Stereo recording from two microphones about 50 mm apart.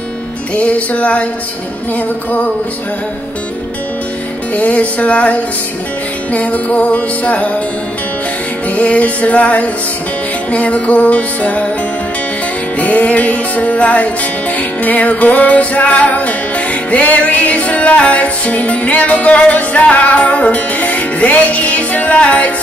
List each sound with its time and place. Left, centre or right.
0.6 s music: left
4.6 s music: left
8.6 s music: left
12.7 s music: left